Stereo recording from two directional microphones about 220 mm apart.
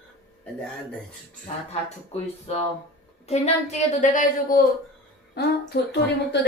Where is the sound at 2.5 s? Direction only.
30° left (ahead or behind).